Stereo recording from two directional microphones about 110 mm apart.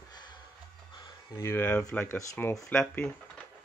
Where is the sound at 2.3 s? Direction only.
30° left (ahead or behind).